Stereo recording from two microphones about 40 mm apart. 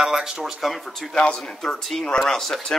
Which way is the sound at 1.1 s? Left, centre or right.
Left.